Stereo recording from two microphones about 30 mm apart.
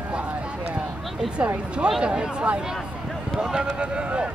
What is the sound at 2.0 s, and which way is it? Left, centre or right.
Speech, right.